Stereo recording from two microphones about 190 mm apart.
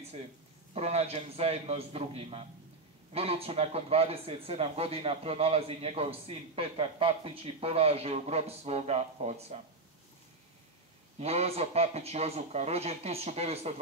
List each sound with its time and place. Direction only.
0.7 s speech: 35° right (ahead or behind)
11.1 s speech: 35° right (ahead or behind)